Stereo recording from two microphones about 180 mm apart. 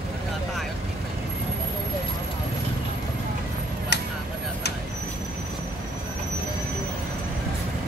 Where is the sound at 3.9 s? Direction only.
65° left (ahead or behind).